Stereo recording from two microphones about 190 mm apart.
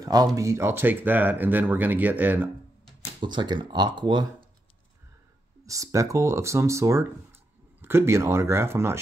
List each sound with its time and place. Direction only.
0.0 s speech: 20° right (ahead or behind)
3.2 s speech: 25° right (ahead or behind)
5.7 s speech: 15° right (ahead or behind)